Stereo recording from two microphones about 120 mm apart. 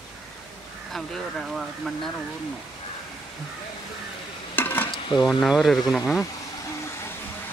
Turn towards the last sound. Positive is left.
turn(degrees=0)  # may be behind; listen again after turning